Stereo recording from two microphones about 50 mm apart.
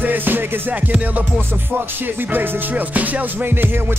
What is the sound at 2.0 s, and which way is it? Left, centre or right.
Music, right.